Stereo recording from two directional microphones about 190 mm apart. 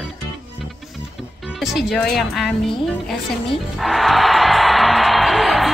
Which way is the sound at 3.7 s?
Centre (ahead or behind).